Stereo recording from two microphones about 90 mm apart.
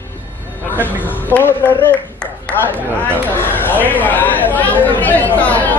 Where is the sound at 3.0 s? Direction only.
20° left (ahead or behind).